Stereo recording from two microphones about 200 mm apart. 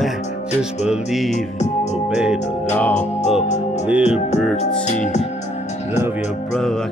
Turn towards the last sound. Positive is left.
turn(degrees=35)  # may be behind; listen again after turning